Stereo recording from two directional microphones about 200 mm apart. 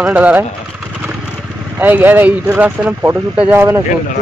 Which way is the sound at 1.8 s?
10° right (ahead or behind).